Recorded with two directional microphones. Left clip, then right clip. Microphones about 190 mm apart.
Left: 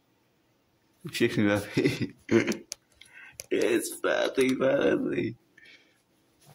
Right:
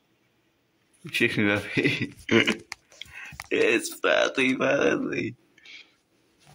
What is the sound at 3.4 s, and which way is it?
Speech, centre (ahead or behind).